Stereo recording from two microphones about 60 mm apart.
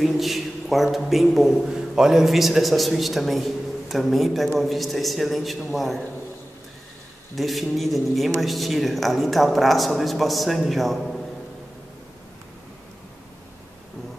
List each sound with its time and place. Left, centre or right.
0.0 s a man's voice: centre
7.3 s a man's voice: centre